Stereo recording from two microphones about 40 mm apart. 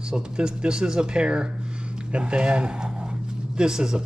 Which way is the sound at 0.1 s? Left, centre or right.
Right.